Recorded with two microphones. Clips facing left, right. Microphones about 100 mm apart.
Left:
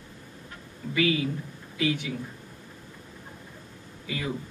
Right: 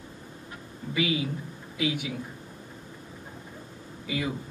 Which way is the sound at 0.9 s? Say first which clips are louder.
Left 3 dB; 15° right (ahead or behind).